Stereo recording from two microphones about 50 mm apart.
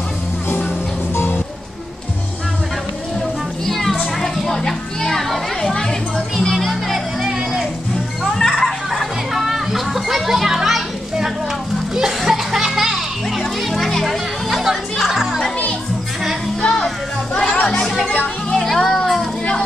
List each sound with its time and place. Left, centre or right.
1.1 s music: left
3.6 s children playing: centre
6.5 s music: centre
8.4 s music: centre
9.3 s children playing: centre
11.9 s music: centre
16.6 s music: centre
17.6 s chatter: centre
18.5 s music: centre